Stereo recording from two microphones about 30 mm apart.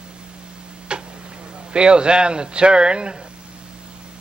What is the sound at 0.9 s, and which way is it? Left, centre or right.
Tick-tock, right.